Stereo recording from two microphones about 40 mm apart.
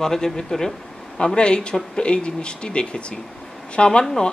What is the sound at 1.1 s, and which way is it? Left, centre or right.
Speech, left.